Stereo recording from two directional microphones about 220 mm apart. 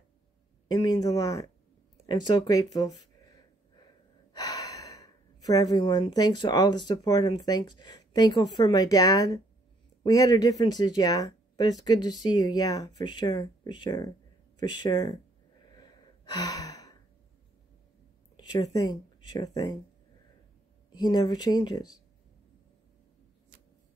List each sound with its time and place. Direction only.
0.7 s speech: 15° left (ahead or behind)
4.3 s gasp: 15° left (ahead or behind)
6.9 s speech: 20° left (ahead or behind)
15.8 s gasp: 20° left (ahead or behind)
18.3 s speech: 15° left (ahead or behind)
20.9 s speech: 20° left (ahead or behind)